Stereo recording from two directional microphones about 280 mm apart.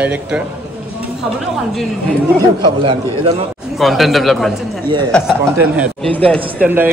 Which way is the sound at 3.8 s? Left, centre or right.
Centre.